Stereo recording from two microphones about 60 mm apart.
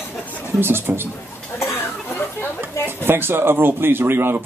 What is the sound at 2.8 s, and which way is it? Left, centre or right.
Speech, right.